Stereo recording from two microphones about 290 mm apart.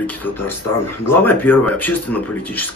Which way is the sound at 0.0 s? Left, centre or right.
Centre.